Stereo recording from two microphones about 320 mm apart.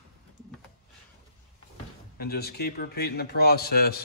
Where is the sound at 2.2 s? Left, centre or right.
Left.